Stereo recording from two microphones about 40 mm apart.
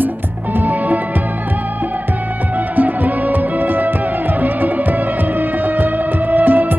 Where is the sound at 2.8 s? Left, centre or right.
Right.